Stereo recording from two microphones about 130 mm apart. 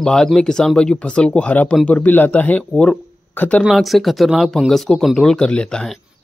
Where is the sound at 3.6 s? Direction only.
Centre (ahead or behind).